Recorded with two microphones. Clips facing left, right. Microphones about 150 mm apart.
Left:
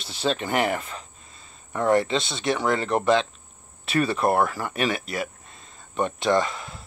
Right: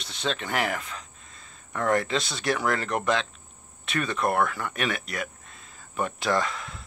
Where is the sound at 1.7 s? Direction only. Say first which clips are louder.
Left 4 dB; 25° left (ahead or behind).